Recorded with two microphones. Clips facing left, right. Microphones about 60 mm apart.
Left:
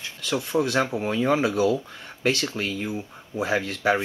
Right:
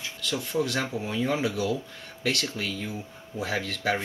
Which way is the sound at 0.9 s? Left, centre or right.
Left.